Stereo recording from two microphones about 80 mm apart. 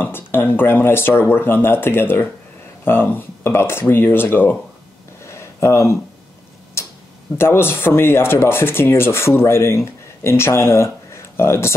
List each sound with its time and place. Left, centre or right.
0.0 s speech: left
5.2 s a sound: left
7.3 s speech: left